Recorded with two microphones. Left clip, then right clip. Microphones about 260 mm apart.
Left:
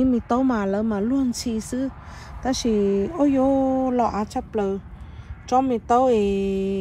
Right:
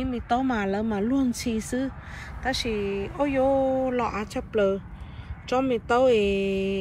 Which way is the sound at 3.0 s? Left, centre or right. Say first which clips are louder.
Left 3 dB; left.